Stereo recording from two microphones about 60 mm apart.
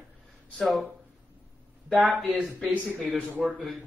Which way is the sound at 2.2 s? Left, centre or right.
Right.